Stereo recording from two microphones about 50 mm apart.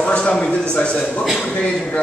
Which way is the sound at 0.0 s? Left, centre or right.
Left.